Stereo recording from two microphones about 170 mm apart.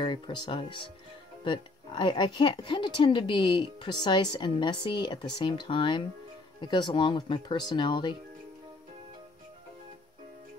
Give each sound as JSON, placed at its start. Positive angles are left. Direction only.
{"t": 0.0, "sound": "speech", "side_deg": 30}